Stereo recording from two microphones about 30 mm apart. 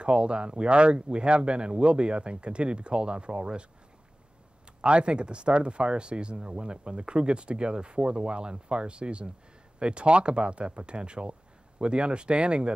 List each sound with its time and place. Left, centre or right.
0.0 s speech: right
4.8 s speech: right